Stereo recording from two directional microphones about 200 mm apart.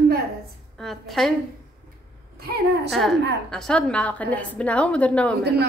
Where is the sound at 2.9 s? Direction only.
Centre (ahead or behind).